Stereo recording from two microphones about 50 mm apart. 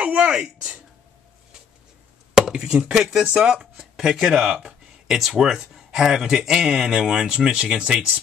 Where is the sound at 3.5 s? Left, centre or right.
Centre.